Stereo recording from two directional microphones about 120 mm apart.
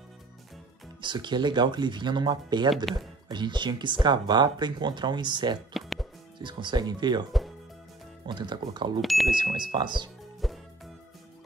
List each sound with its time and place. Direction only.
1.0 s speech: 40° right (ahead or behind)
2.7 s speech: centre (ahead or behind)
3.3 s speech: 40° right (ahead or behind)
5.7 s music: centre (ahead or behind)
6.4 s speech: 40° right (ahead or behind)
8.3 s speech: 40° right (ahead or behind)
9.0 s speech: centre (ahead or behind)
9.3 s speech: 40° right (ahead or behind)
10.4 s music: centre (ahead or behind)